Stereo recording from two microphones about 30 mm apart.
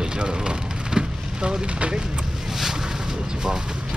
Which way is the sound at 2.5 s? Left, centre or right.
Centre.